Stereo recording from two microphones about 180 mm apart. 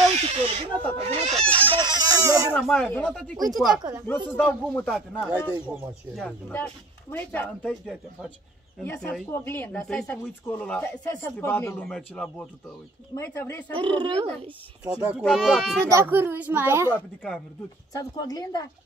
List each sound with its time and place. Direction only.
0.0 s a sound: 40° right (ahead or behind)
1.0 s chicken: 35° right (ahead or behind); by 2.4 s 20° right (ahead or behind)
2.6 s a man's voice: 5° left (ahead or behind)
4.1 s a man's voice: 10° left (ahead or behind)
8.8 s a man's voice: 15° left (ahead or behind)
13.7 s speech: 25° right (ahead or behind)
15.0 s a man's voice: 5° right (ahead or behind)
15.9 s a woman's voice: 15° right (ahead or behind)
16.9 s speech: 10° left (ahead or behind)
17.9 s a woman's voice: 20° left (ahead or behind)